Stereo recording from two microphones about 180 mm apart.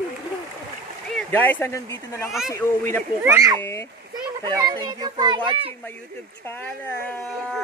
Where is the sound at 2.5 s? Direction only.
15° left (ahead or behind).